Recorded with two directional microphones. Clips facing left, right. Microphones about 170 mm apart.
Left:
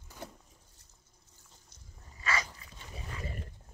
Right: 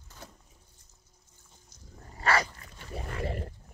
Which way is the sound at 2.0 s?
65° right (ahead or behind).